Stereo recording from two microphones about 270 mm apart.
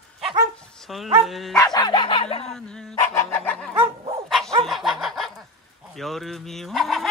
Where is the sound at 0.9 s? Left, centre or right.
Centre.